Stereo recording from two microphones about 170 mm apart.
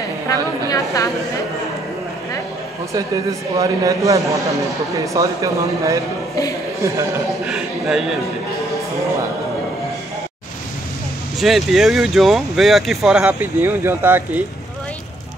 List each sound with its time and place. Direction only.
0.7 s a woman's voice: 20° left (ahead or behind)
3.5 s a man's voice: 20° right (ahead or behind)
7.4 s speech: centre (ahead or behind)
11.3 s speech: centre (ahead or behind)